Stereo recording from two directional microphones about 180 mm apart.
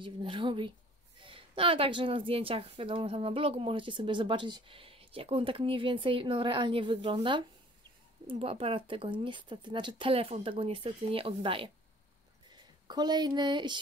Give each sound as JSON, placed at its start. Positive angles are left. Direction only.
{"t": 0.0, "sound": "a woman's voice", "side_deg": -30}
{"t": 12.8, "sound": "a woman's voice", "side_deg": -25}